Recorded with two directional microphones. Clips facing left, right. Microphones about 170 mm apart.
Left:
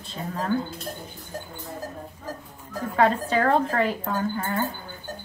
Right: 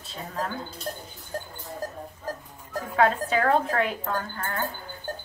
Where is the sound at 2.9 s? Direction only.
Centre (ahead or behind).